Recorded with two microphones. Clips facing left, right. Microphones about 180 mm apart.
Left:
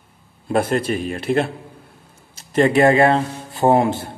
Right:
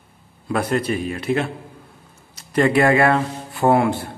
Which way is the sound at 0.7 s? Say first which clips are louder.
Left 1 dB; 45° left (ahead or behind).